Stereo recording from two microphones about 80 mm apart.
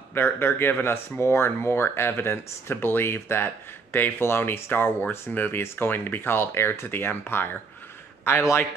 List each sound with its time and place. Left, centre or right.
0.1 s a man's voice: left